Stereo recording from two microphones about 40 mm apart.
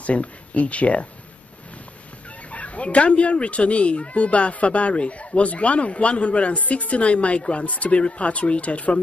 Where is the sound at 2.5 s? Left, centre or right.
Left.